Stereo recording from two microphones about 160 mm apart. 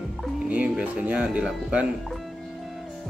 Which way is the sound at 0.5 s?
10° right (ahead or behind).